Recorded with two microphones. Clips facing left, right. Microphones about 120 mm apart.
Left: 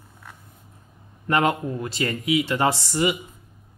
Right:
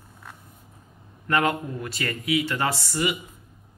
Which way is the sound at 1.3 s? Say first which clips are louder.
Left 2 dB; 25° left (ahead or behind).